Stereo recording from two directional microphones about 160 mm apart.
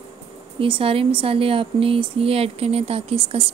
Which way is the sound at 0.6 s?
35° right (ahead or behind).